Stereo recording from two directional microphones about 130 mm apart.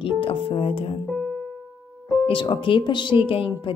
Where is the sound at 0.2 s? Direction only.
45° left (ahead or behind).